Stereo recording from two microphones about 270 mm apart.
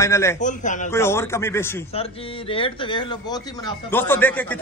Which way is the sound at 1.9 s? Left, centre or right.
Left.